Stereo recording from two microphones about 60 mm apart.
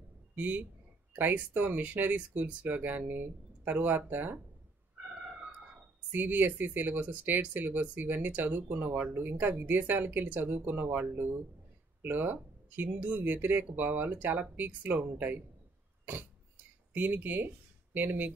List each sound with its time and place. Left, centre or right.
0.4 s speech: right
6.1 s speech: right
16.9 s speech: right